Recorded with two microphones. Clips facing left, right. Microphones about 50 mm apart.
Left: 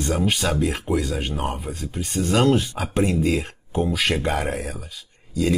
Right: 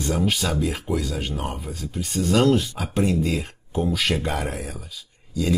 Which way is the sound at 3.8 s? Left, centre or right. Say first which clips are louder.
Even; centre.